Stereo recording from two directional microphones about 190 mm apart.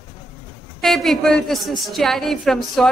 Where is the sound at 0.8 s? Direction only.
Centre (ahead or behind).